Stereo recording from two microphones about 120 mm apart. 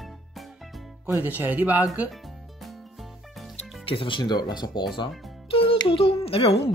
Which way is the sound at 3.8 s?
50° left (ahead or behind).